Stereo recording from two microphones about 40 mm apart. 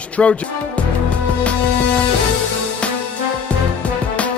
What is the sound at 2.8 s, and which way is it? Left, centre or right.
Music, left.